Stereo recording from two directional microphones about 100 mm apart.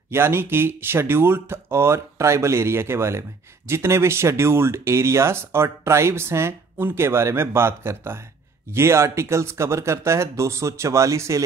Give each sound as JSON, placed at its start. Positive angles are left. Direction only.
{"t": 0.1, "sound": "speech", "side_deg": -25}